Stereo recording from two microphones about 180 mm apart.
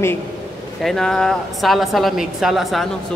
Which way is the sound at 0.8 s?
Centre (ahead or behind).